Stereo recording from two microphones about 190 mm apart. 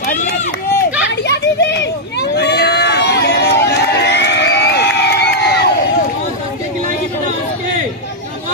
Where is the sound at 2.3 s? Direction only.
60° left (ahead or behind).